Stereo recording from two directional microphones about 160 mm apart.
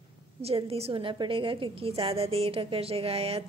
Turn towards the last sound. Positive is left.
turn(degrees=-35)  # may be behind; listen again after turning